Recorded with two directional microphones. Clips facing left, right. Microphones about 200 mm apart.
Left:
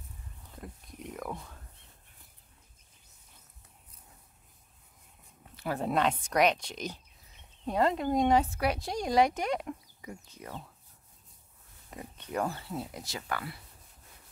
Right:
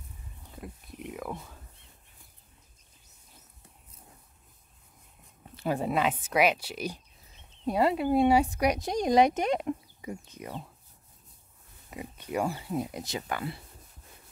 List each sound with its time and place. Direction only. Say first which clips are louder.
0.6 s wild animals: right 3 dB; 5° right (ahead or behind)
5.8 s speech: left 2 dB; 5° right (ahead or behind)
11.9 s speech: right 3 dB; 10° right (ahead or behind)